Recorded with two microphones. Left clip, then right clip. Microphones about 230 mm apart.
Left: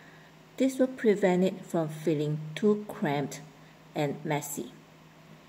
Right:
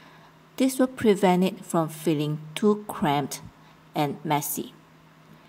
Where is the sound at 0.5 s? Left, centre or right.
Right.